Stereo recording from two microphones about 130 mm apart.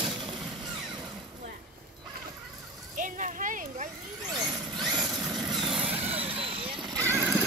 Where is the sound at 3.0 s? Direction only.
80° right.